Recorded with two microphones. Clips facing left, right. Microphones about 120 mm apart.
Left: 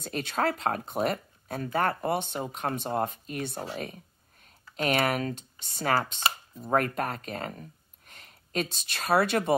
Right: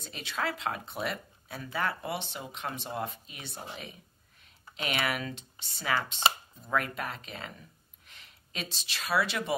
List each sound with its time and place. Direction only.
0.0 s speech: 50° left (ahead or behind)